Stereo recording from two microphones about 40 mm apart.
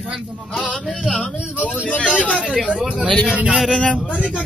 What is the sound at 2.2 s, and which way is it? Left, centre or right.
Speech, left.